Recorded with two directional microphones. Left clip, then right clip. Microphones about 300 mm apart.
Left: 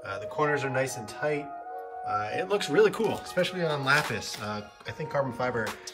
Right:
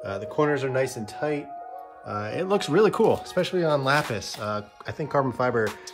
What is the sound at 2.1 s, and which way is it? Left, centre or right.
Speech, centre.